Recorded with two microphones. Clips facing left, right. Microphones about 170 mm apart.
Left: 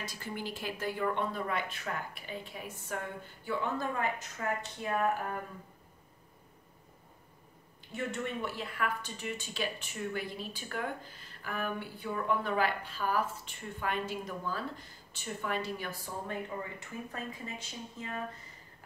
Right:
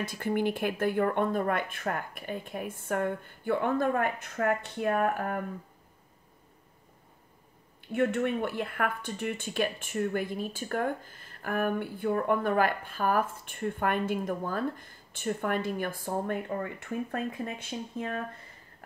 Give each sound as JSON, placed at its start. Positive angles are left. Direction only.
{"t": 0.0, "sound": "speech", "side_deg": -55}
{"t": 7.9, "sound": "speech", "side_deg": -60}